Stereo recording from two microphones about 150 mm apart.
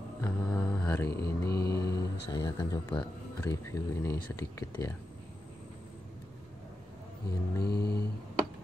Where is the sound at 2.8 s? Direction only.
10° left (ahead or behind).